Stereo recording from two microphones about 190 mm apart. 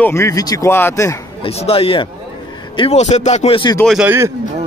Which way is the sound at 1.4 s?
30° left (ahead or behind).